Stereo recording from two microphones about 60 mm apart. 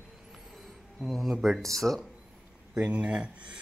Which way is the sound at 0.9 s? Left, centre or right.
Centre.